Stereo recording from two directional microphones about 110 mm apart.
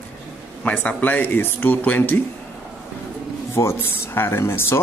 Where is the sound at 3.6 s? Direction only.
20° left (ahead or behind).